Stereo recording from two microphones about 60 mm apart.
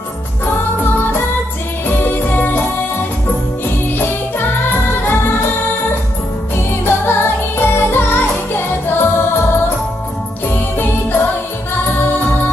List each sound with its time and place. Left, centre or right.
1.9 s music: left
6.5 s music: left
10.5 s jingle bell: left
12.0 s music: left